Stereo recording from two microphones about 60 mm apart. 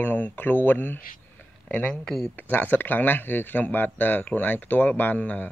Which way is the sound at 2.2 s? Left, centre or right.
Left.